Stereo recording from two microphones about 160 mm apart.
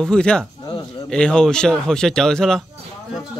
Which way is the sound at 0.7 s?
30° left (ahead or behind).